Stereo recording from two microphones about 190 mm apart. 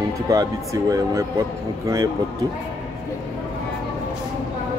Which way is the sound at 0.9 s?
15° right (ahead or behind).